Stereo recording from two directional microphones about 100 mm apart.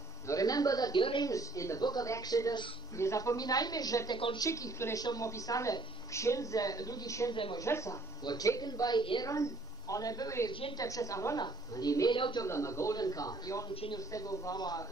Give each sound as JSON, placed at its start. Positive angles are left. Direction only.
{"t": 0.3, "sound": "a sound", "side_deg": 35}
{"t": 0.9, "sound": "speech", "side_deg": 55}
{"t": 1.2, "sound": "speech", "side_deg": 35}
{"t": 4.1, "sound": "speech", "side_deg": 55}
{"t": 4.4, "sound": "a woman's voice", "side_deg": 30}
{"t": 11.3, "sound": "speech", "side_deg": 45}
{"t": 12.1, "sound": "speech", "side_deg": 55}
{"t": 12.4, "sound": "speech", "side_deg": 30}